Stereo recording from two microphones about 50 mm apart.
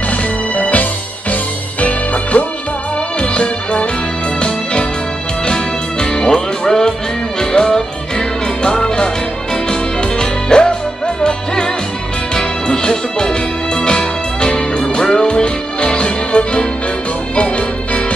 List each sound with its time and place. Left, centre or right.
0.6 s music: left
5.5 s music: centre
17.4 s organ: left